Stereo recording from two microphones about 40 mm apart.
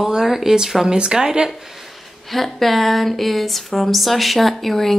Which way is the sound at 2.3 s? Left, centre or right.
Centre.